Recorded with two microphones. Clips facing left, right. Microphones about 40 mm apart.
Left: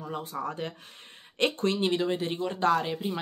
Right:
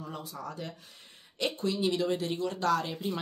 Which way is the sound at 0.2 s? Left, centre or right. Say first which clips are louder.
Left 6 dB; left.